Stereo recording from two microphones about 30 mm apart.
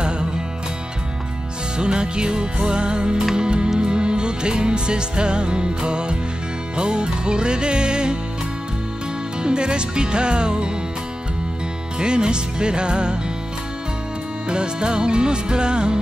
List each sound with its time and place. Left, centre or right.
1.8 s music: right
9.4 s music: right
12.0 s music: right
14.5 s music: right